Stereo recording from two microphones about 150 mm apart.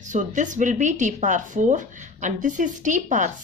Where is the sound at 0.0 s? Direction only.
55° right (ahead or behind).